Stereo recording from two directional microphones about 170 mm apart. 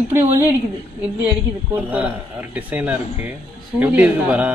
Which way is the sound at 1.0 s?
10° right (ahead or behind).